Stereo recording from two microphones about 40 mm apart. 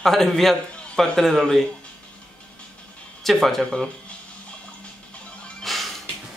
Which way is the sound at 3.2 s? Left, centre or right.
Centre.